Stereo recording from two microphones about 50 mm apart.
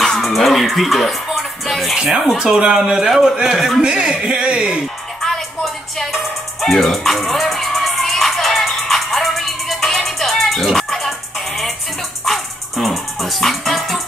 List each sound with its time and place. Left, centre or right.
0.0 s music: centre
2.0 s a man's voice: centre
3.8 s a man's voice: centre
5.2 s music: centre